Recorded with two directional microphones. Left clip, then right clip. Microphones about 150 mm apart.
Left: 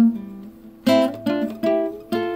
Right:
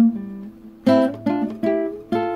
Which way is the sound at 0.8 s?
35° right (ahead or behind).